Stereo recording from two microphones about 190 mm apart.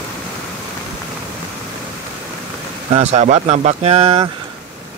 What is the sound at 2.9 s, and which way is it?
Speech, 35° right (ahead or behind).